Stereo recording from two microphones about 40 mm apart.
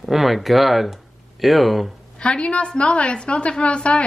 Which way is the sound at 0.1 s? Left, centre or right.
Centre.